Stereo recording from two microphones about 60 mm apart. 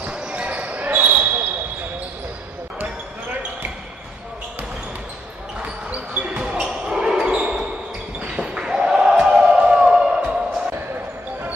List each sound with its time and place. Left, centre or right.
0.0 s basketball bounce: right
5.6 s basketball bounce: right